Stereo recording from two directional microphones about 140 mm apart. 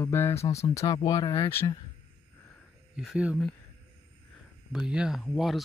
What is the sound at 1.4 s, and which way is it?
Speech, 15° left (ahead or behind).